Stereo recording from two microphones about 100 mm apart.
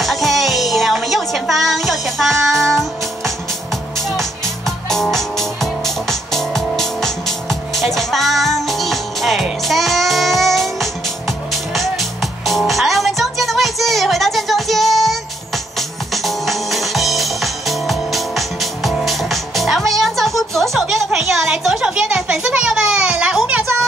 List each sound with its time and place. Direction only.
0.0 s music: centre (ahead or behind)